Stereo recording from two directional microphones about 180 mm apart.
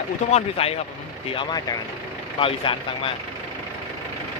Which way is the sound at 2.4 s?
30° left (ahead or behind).